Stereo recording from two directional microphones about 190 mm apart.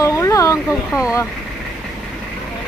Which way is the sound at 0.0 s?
15° left (ahead or behind).